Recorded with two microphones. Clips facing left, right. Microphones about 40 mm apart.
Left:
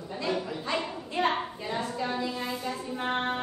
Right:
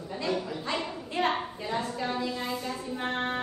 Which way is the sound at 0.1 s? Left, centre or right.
Centre.